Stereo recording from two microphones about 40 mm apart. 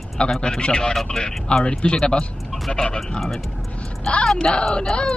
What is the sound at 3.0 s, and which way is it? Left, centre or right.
Speech, centre.